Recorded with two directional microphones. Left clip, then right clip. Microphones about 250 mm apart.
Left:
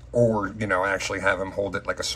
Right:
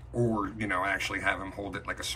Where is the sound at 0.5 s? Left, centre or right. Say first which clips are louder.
Left 6 dB; centre.